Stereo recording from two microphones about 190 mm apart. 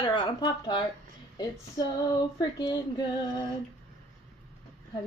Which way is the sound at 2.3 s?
20° left (ahead or behind).